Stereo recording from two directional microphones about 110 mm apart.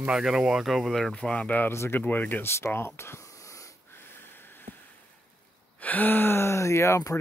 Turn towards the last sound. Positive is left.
turn(degrees=25)  # may be behind; listen again after turning